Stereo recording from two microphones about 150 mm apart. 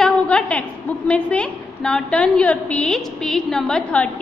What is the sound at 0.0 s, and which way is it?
A woman's voice, 5° left (ahead or behind).